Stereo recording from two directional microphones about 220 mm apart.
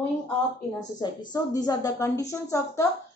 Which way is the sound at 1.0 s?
15° left (ahead or behind).